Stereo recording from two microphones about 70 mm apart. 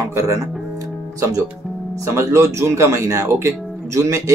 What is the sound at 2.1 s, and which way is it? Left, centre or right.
Speech, right.